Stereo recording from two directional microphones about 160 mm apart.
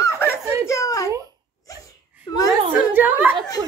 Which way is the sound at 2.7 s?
10° right (ahead or behind).